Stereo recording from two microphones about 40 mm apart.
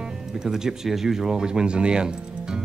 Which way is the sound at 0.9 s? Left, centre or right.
Centre.